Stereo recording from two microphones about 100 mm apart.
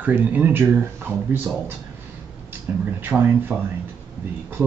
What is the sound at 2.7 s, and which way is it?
Speech, 15° right (ahead or behind).